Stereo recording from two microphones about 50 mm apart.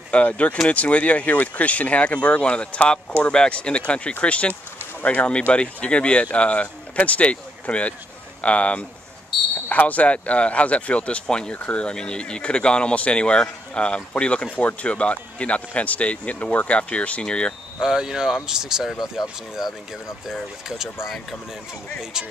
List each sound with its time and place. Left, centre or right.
0.1 s speech: left
9.3 s speech: centre
9.7 s speech: left
11.5 s speech: left
11.8 s speech: centre
17.7 s speech: centre